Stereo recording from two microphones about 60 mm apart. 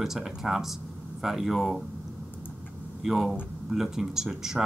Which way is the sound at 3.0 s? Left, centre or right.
Centre.